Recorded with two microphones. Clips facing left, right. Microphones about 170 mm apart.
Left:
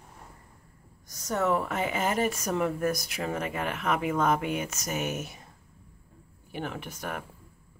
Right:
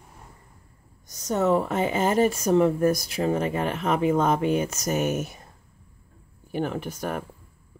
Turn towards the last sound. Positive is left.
turn(degrees=-35)  # may be behind; listen again after turning